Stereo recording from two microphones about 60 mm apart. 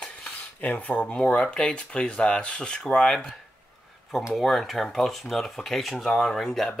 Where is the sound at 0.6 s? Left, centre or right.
Left.